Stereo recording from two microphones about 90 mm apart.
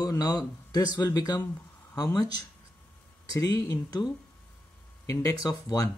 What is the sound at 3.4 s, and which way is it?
Speech, 45° left (ahead or behind).